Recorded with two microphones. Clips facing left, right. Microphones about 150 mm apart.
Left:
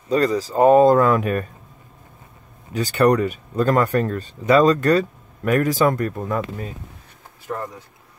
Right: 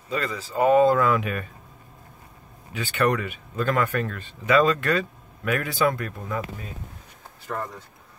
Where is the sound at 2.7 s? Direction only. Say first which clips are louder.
Left 7 dB; 40° left (ahead or behind).